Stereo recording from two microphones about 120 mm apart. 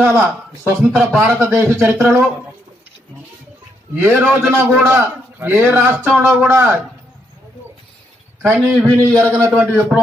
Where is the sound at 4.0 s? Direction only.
10° right (ahead or behind).